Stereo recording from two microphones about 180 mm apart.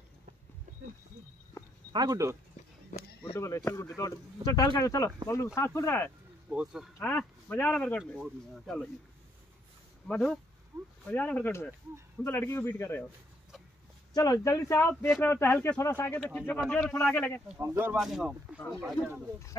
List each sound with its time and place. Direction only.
1.9 s speech: 20° right (ahead or behind)
3.3 s speech: 15° left (ahead or behind)
6.5 s speech: 5° right (ahead or behind)
7.0 s speech: 10° left (ahead or behind)
10.0 s speech: 5° left (ahead or behind)
10.7 s speech: 20° right (ahead or behind)
11.1 s speech: 10° left (ahead or behind)
14.1 s speech: 20° left (ahead or behind)
17.5 s speech: 10° right (ahead or behind)
17.9 s speech: centre (ahead or behind)